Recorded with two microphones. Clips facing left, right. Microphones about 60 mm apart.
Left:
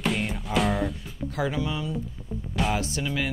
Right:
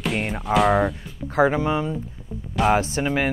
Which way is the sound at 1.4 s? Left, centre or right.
Right.